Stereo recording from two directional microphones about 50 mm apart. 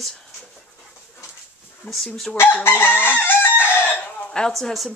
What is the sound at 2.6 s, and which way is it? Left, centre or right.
Chicken, left.